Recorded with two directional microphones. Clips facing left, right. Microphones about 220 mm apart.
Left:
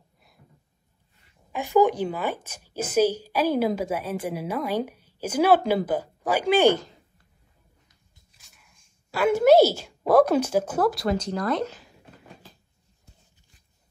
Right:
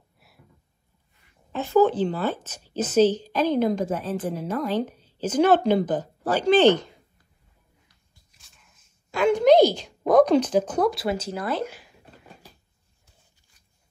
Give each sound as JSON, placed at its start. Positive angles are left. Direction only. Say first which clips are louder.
{"t": 1.5, "sound": "a woman's voice", "louder": "right 1 dB", "side_deg": 15}
{"t": 8.4, "sound": "speech", "louder": "even", "side_deg": 0}